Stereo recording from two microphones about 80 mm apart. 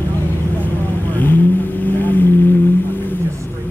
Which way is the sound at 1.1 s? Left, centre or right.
Left.